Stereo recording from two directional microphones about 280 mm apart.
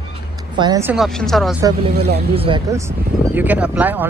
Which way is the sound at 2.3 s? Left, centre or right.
Centre.